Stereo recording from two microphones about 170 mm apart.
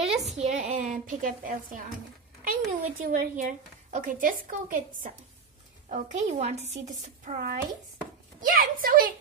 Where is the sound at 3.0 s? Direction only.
50° right (ahead or behind).